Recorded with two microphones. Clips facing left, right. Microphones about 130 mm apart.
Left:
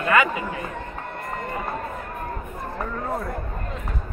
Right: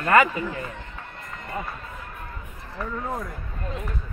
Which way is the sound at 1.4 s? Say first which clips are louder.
Left 3 dB; 55° left (ahead or behind).